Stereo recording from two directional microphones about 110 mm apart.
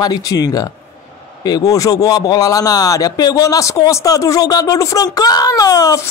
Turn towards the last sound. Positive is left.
turn(degrees=35)  # may be behind; listen again after turning